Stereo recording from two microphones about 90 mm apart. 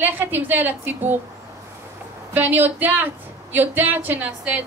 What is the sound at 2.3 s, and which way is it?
A woman's voice, 20° right (ahead or behind).